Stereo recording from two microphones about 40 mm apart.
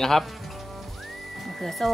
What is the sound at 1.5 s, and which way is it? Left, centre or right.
Speech, centre.